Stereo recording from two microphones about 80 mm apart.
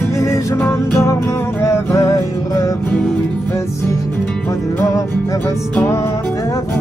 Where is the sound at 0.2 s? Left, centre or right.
Left.